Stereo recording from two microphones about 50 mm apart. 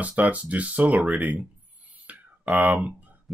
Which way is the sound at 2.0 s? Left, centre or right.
Right.